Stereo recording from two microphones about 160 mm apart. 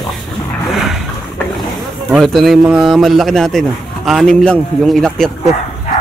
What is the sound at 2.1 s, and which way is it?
A man's voice, centre (ahead or behind).